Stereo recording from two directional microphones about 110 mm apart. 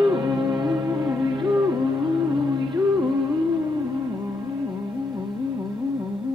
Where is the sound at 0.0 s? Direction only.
40° right (ahead or behind).